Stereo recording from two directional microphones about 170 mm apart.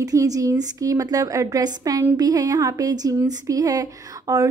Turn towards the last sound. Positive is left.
turn(degrees=-20)  # may be behind; listen again after turning